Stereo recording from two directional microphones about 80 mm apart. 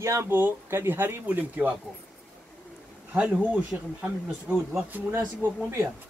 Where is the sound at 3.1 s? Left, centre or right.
Centre.